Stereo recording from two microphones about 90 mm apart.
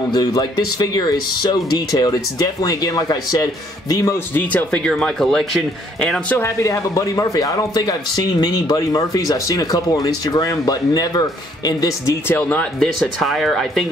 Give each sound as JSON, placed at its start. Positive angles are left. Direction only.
{"t": 0.1, "sound": "speech", "side_deg": 45}
{"t": 3.9, "sound": "speech", "side_deg": 30}
{"t": 4.4, "sound": "speech", "side_deg": 15}
{"t": 6.3, "sound": "speech", "side_deg": 35}
{"t": 12.3, "sound": "speech", "side_deg": 20}
{"t": 13.2, "sound": "speech", "side_deg": 0}